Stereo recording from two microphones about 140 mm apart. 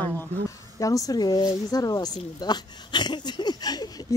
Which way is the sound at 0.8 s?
25° left (ahead or behind).